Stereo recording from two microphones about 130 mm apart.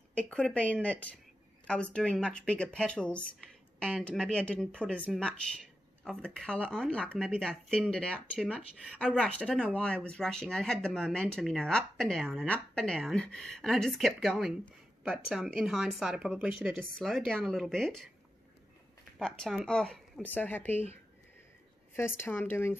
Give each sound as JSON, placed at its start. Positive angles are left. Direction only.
{"t": 0.1, "sound": "speech", "side_deg": 10}
{"t": 19.1, "sound": "speech", "side_deg": 5}